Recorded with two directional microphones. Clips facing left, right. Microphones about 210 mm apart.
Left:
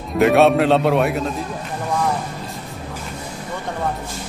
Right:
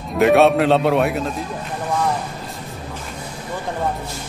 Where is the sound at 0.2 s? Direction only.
Centre (ahead or behind).